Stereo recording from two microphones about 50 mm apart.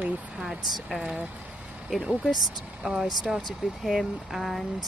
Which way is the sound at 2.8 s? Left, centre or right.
Right.